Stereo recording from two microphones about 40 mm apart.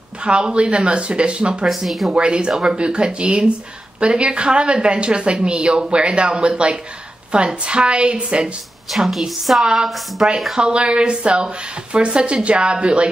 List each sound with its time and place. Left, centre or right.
0.2 s a woman's voice: right
1.9 s a woman's voice: centre
2.1 s a woman's voice: right
8.9 s a woman's voice: centre
9.6 s a woman's voice: centre